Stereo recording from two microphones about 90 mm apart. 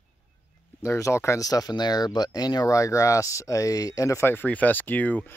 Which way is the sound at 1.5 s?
45° left (ahead or behind).